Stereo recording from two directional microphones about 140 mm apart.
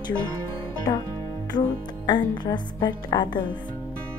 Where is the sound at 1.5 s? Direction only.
30° left (ahead or behind).